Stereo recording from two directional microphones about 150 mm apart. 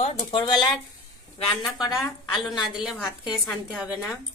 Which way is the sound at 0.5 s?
30° left (ahead or behind).